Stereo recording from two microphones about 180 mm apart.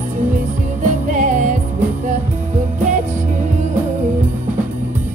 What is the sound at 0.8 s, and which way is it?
Music, 45° right (ahead or behind).